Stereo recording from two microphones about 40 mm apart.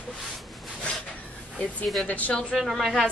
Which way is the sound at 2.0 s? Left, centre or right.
Left.